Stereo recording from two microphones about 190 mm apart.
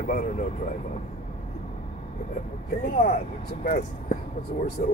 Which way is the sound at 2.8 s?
45° left (ahead or behind).